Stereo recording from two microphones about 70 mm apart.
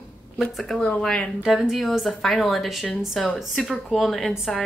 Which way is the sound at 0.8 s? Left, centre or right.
Left.